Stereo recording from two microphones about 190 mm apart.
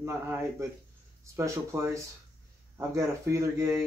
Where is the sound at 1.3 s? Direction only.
15° right (ahead or behind).